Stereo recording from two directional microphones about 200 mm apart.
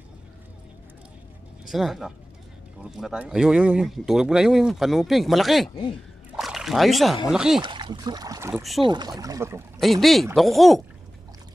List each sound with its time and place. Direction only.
1.7 s speech: centre (ahead or behind)
7.6 s speech: 25° right (ahead or behind)
9.8 s speech: centre (ahead or behind)